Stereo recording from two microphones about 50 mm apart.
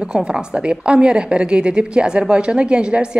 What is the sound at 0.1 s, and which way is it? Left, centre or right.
A woman's voice, centre.